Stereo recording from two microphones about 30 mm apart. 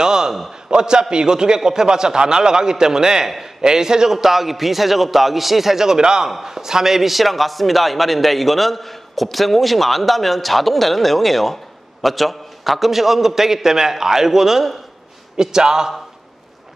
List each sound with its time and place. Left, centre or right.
0.0 s a sound: right
0.7 s a man's voice: right; by 5.9 s centre
5.9 s a man's voice: right